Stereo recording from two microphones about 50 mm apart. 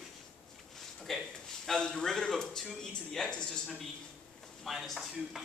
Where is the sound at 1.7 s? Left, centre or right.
Centre.